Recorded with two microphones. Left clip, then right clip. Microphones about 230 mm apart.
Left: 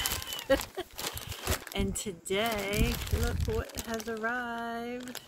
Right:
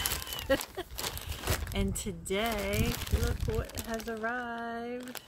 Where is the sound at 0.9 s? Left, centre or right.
Centre.